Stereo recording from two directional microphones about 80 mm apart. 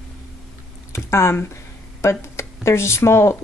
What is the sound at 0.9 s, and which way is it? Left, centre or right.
Speech, left.